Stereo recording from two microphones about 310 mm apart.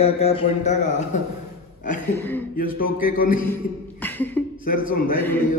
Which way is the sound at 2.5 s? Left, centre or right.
Left.